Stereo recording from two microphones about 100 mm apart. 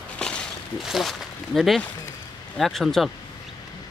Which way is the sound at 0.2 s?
10° left (ahead or behind).